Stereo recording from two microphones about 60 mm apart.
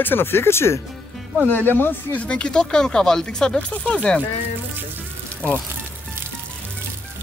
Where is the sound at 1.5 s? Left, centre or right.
Left.